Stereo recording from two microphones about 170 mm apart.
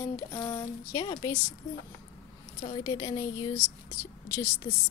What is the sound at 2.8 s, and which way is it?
Speech, 20° left (ahead or behind).